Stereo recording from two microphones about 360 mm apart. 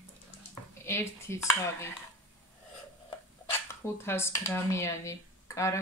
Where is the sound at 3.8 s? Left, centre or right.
Centre.